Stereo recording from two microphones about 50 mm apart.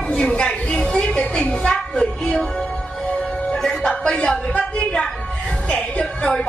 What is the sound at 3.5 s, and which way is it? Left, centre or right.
Music, centre.